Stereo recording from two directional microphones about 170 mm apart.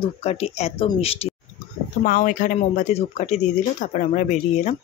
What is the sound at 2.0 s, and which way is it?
Speech, 55° left (ahead or behind).